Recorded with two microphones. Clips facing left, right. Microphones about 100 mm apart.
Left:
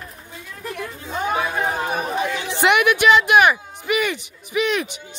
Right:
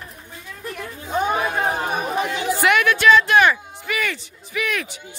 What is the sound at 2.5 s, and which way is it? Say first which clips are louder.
Speech: left 1 dB; 20° left (ahead or behind).